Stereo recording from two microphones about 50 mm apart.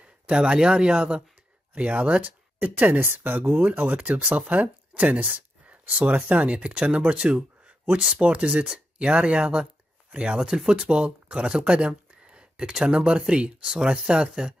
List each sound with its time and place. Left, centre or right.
0.0 s speech: centre
5.0 s a sound: right
5.9 s speech: right